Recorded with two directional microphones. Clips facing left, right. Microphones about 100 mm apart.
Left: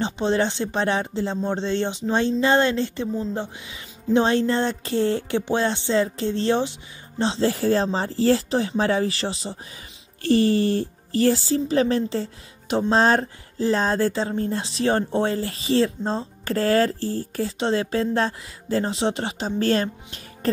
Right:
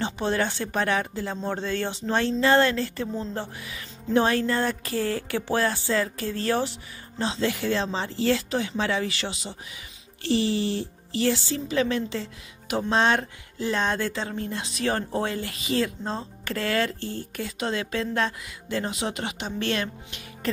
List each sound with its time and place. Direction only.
0.0 s speech: 20° left (ahead or behind)
10.2 s speech: 50° left (ahead or behind)